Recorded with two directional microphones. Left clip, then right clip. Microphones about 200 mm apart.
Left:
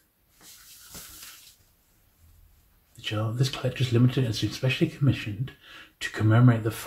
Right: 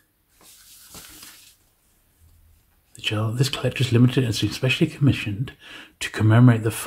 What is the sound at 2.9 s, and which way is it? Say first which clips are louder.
Speech: right 6 dB; 45° right (ahead or behind).